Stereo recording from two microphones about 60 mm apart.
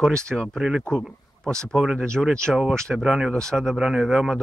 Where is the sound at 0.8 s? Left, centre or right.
Centre.